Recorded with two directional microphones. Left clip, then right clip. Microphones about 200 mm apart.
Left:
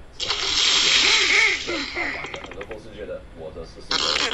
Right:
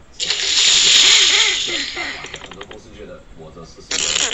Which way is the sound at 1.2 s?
5° right (ahead or behind).